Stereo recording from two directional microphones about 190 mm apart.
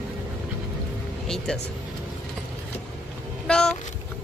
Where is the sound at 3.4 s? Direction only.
5° left (ahead or behind).